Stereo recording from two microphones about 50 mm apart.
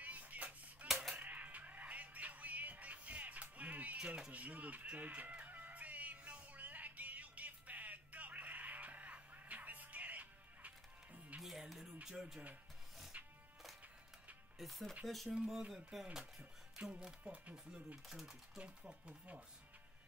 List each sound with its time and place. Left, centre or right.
0.0 s music: right
4.3 s speech: right
5.4 s music: right
11.4 s music: centre
13.1 s music: right
14.6 s speech: centre
16.9 s speech: right
18.0 s speech: centre
18.6 s speech: right